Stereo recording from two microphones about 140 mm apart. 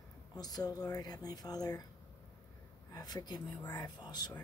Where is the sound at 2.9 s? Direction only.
30° left (ahead or behind).